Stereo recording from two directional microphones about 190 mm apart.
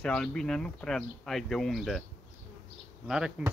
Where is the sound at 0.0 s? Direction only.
5° left (ahead or behind).